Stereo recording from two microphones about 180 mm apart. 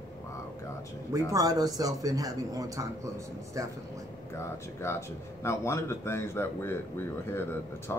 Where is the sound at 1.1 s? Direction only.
20° right (ahead or behind).